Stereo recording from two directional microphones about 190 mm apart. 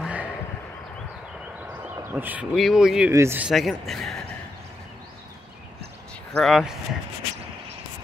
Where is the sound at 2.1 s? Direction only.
10° right (ahead or behind).